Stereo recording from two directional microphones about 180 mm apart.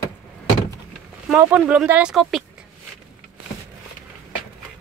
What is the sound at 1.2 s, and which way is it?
Speech, 5° right (ahead or behind).